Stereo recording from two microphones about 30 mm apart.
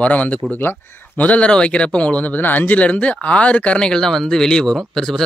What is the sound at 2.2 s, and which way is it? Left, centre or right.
Speech, left.